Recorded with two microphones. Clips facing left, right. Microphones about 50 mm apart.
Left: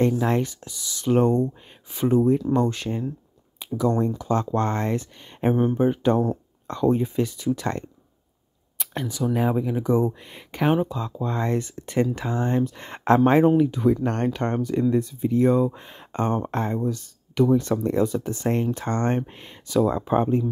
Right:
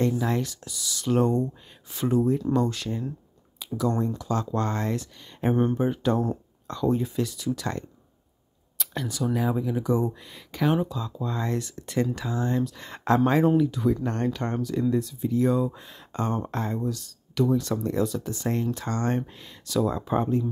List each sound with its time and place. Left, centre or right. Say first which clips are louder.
0.0 s speech: left 4 dB; left
0.4 s speech: left 4 dB; left
3.7 s speech: left 4 dB; centre
4.2 s speech: left 4 dB; left
5.5 s speech: left 2 dB; centre
5.8 s speech: left 4 dB; left
8.7 s a sound: left 2 dB; left
9.3 s speech: left 3 dB; left
10.7 s speech: left 4 dB; left
11.0 s speech: left 4 dB; left
14.0 s speech: left 3 dB; left